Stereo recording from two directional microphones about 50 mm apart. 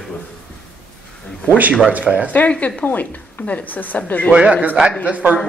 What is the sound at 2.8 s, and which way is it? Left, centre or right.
Speech, left.